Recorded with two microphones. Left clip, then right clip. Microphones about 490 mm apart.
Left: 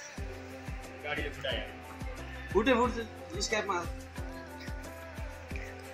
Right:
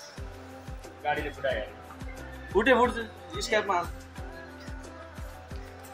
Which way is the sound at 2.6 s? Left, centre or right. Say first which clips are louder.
Right 5 dB; left.